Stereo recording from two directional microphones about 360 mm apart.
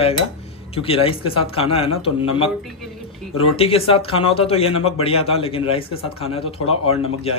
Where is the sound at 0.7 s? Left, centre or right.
Centre.